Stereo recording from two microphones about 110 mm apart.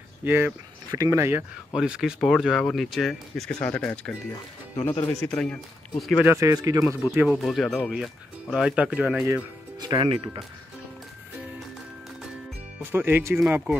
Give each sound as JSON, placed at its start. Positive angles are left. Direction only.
{"t": 0.2, "sound": "speech", "side_deg": -20}
{"t": 1.7, "sound": "speech", "side_deg": -5}
{"t": 6.2, "sound": "speech", "side_deg": -25}
{"t": 7.0, "sound": "speech", "side_deg": 35}
{"t": 7.4, "sound": "speech", "side_deg": 0}
{"t": 9.8, "sound": "speech", "side_deg": -40}
{"t": 10.0, "sound": "speech", "side_deg": -60}
{"t": 12.9, "sound": "speech", "side_deg": -20}
{"t": 13.4, "sound": "speech", "side_deg": -5}